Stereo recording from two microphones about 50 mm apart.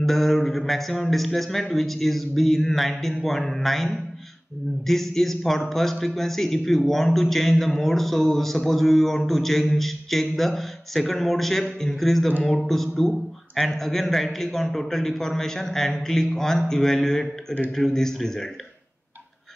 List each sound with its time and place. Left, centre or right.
0.0 s a man's voice: centre